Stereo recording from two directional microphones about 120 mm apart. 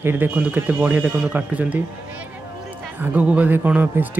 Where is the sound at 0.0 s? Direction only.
15° right (ahead or behind).